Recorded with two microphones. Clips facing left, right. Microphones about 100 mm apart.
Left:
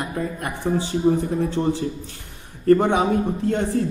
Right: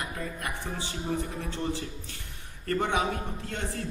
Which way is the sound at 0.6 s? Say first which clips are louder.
Left 15 dB; 45° left (ahead or behind).